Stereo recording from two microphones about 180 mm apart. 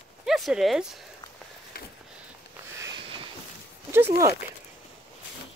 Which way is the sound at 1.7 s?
60° left (ahead or behind).